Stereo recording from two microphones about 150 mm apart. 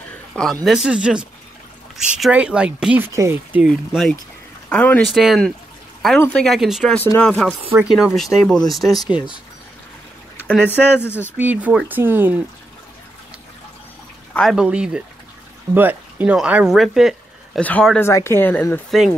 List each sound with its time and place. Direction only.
0.3 s speech: 5° left (ahead or behind)
3.1 s speech: 20° right (ahead or behind)
3.6 s speech: centre (ahead or behind)
7.0 s speech: 10° left (ahead or behind)
10.3 s speech: 10° left (ahead or behind)
11.3 s speech: 10° right (ahead or behind)
14.3 s speech: centre (ahead or behind)
18.9 s speech: centre (ahead or behind)